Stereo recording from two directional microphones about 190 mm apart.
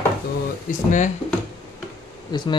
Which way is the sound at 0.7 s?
40° left (ahead or behind).